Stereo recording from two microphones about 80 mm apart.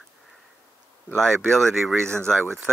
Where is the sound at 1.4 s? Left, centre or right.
Centre.